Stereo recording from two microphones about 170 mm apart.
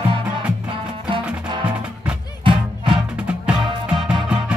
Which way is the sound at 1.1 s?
25° right (ahead or behind).